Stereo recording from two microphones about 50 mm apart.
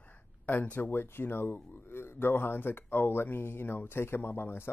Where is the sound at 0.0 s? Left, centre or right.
Left.